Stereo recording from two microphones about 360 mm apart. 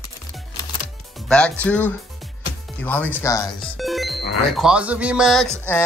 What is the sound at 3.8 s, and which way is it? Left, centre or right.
Music, centre.